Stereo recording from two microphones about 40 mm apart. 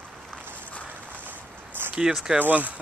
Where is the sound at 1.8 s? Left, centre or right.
Right.